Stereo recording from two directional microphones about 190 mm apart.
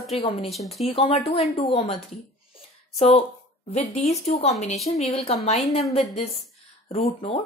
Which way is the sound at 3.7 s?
35° left (ahead or behind).